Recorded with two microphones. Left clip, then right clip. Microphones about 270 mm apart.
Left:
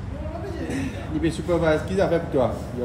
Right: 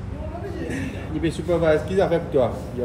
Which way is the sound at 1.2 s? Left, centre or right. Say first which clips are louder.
Right 2 dB; centre.